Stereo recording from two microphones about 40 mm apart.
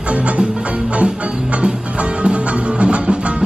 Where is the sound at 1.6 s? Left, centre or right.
Right.